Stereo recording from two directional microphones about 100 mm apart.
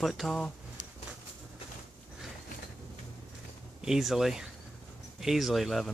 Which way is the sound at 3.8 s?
5° right (ahead or behind).